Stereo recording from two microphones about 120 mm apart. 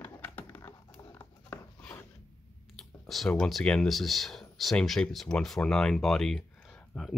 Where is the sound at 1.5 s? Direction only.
10° left (ahead or behind).